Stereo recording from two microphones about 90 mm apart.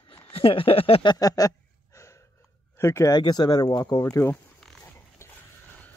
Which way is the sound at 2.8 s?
35° left (ahead or behind).